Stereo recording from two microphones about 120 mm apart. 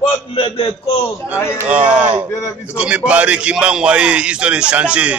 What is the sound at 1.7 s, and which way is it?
A man's voice, 10° right (ahead or behind).